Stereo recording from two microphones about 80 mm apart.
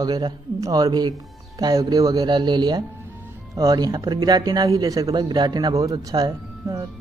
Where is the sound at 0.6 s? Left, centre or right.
Right.